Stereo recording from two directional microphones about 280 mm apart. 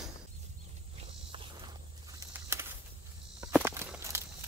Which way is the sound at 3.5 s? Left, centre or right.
Centre.